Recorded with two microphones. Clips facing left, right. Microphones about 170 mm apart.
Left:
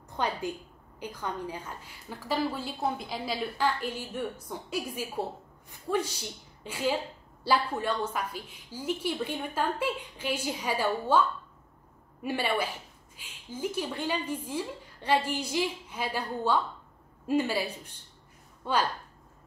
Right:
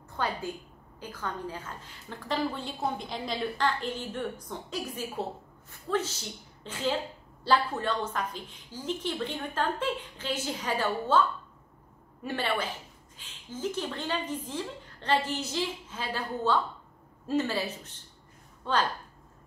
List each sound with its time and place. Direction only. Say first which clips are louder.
0.2 s a woman's voice: left 1 dB; 20° left (ahead or behind)